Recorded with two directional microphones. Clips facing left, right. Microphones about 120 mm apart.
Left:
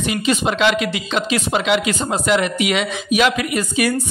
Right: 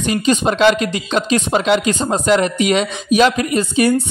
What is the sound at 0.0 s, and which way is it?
Speech, 35° right (ahead or behind).